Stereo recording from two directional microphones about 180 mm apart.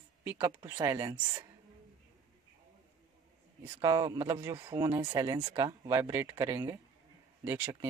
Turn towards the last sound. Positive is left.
turn(degrees=-10)  # may be behind; listen again after turning